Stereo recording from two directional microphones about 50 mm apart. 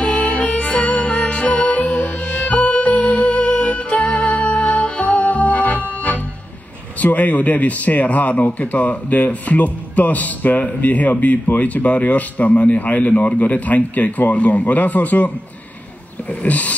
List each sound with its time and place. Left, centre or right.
0.0 s music: left
7.0 s a man's voice: left